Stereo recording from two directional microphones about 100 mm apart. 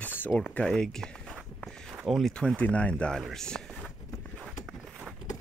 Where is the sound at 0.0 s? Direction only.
20° left (ahead or behind).